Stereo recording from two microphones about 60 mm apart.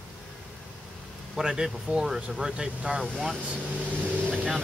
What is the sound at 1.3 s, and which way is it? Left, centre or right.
Speech, centre.